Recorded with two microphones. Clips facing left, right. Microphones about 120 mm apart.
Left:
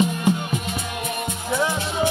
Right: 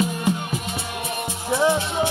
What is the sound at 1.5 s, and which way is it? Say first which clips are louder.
Music: right 3 dB; 25° right (ahead or behind).